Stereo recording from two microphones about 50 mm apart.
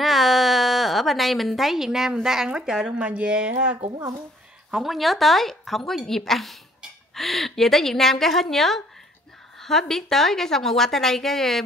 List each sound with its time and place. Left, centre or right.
0.0 s a sound: centre
2.2 s speech: centre
3.0 s speech: right
4.6 s a woman's voice: centre